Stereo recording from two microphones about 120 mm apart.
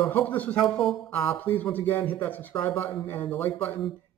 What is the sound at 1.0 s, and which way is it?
Speech, 15° left (ahead or behind).